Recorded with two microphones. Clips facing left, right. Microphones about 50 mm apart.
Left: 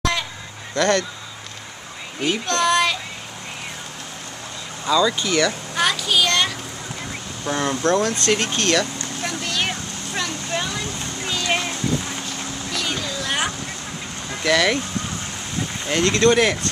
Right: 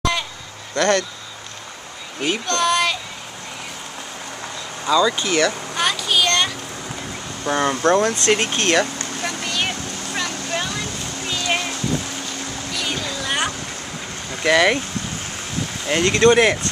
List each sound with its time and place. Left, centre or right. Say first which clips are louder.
0.7 s speech: right 1 dB; centre
2.2 s a child's voice: even; centre
4.8 s speech: right 1 dB; centre
5.8 s children playing: left 1 dB; centre
7.4 s speech: right 3 dB; right
9.2 s vehicle: even; centre
11.2 s a sound: even; centre
12.7 s a sound: even; centre
14.4 s speech: right 3 dB; centre
15.9 s speech: right 2 dB; centre